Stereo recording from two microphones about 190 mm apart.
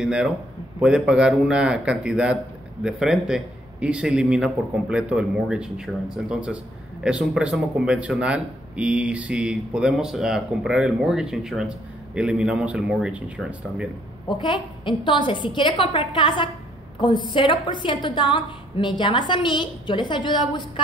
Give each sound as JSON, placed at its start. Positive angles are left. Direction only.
{"t": 0.0, "sound": "a man's voice", "side_deg": -5}
{"t": 14.2, "sound": "a woman's voice", "side_deg": 25}